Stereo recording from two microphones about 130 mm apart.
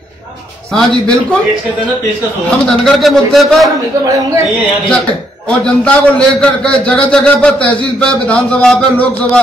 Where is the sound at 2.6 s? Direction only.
5° left (ahead or behind).